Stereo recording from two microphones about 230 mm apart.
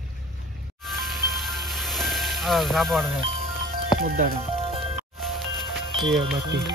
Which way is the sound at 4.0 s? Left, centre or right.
Right.